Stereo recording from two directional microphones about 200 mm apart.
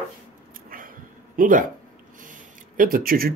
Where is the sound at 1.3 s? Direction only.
45° right (ahead or behind).